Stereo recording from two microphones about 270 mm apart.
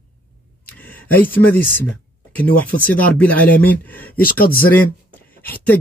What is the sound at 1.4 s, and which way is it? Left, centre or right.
Speech, centre.